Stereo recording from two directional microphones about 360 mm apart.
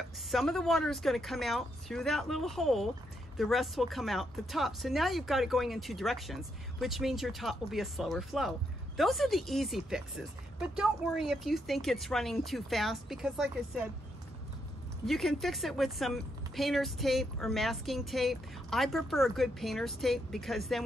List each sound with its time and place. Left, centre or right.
0.3 s speech: centre
15.0 s speech: centre